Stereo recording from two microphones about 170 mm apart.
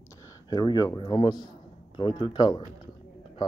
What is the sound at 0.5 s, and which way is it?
Speech, 25° left (ahead or behind).